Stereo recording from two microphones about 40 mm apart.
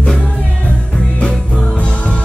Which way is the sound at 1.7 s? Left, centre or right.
Left.